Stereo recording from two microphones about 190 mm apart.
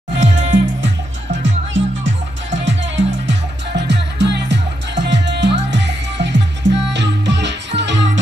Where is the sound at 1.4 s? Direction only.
75° right (ahead or behind).